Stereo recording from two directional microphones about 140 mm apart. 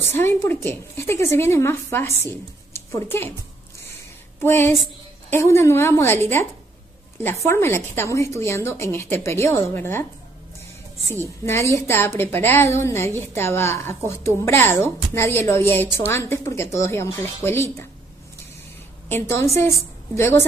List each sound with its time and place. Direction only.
0.0 s a woman's voice: 15° left (ahead or behind)
4.4 s a woman's voice: 15° left (ahead or behind)
7.2 s a woman's voice: 20° left (ahead or behind)
11.4 s a woman's voice: 20° left (ahead or behind)
19.0 s a woman's voice: 15° left (ahead or behind)